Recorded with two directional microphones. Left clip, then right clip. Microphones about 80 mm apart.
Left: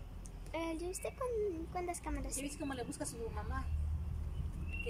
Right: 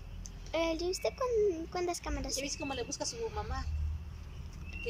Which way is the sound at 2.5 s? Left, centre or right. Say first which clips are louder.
Right 5 dB; centre.